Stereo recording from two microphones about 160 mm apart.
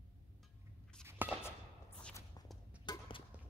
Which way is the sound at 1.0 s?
10° right (ahead or behind).